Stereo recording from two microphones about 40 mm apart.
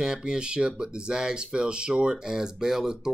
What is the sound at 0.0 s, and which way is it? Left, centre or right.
Speech, centre.